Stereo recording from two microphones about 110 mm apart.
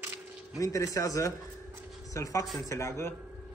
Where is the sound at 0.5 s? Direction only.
30° left (ahead or behind).